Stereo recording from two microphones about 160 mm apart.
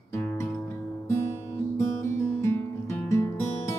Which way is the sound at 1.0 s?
15° left (ahead or behind).